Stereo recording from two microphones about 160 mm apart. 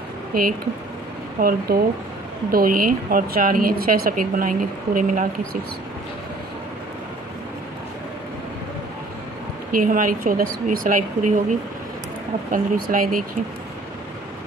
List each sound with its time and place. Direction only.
0.3 s speech: 60° right (ahead or behind)
9.7 s speech: 60° right (ahead or behind)
12.4 s speech: 60° right (ahead or behind)